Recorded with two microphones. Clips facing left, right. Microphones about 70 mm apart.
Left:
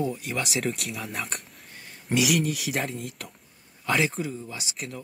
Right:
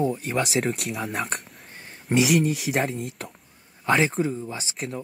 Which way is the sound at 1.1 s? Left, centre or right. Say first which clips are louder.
Right 6 dB; right.